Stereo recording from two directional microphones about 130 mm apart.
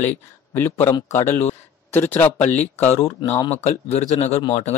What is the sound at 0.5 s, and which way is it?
A man's voice, 15° left (ahead or behind).